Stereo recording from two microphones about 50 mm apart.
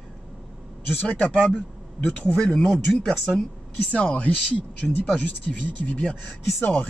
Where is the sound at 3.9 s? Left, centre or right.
Left.